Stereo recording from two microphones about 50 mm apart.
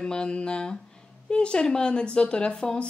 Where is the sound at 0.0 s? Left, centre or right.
Centre.